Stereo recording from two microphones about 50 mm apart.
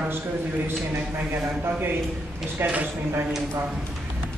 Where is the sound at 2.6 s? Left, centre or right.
Right.